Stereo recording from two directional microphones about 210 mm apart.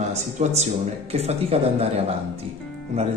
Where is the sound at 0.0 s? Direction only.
30° right (ahead or behind).